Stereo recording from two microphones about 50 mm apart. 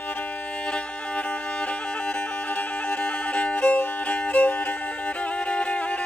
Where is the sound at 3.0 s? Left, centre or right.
Left.